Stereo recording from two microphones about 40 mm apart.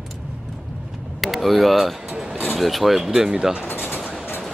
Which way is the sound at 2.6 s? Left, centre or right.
Centre.